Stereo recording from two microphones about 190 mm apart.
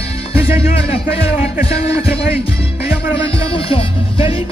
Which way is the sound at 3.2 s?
30° left (ahead or behind).